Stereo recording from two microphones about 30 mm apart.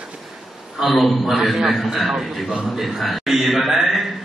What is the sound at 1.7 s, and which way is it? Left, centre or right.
A man's voice, centre.